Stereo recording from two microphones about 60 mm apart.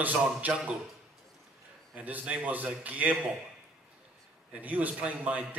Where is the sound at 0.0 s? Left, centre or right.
Right.